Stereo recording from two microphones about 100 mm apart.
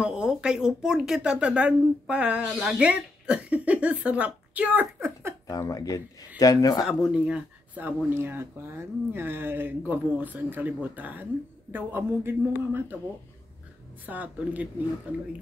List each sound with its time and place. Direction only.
0.0 s speech: 10° right (ahead or behind)
5.5 s speech: 35° left (ahead or behind)
7.1 s speech: 10° right (ahead or behind)
14.0 s speech: 15° right (ahead or behind)